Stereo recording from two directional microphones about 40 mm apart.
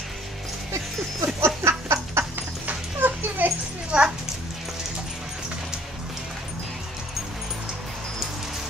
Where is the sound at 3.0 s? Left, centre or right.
Right.